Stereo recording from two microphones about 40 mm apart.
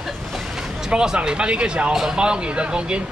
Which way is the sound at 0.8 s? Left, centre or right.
Centre.